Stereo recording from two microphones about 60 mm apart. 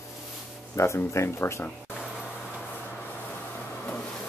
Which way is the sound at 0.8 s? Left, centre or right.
Left.